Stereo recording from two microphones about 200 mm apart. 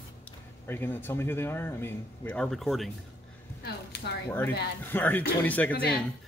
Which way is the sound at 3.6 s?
55° left (ahead or behind).